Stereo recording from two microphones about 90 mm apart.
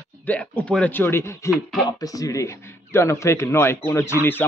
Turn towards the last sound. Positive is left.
turn(degrees=25)  # may be behind; listen again after turning